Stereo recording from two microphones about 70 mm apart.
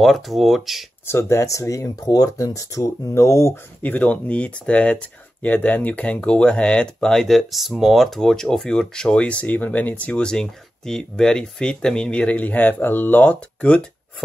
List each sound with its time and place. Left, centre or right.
0.0 s speech: centre
1.0 s speech: left
3.8 s speech: left
10.3 s speech: centre